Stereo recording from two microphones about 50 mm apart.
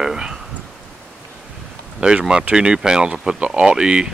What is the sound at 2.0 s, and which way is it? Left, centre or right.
Speech, centre.